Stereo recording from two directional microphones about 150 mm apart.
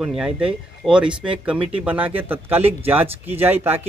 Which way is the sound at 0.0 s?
5° right (ahead or behind).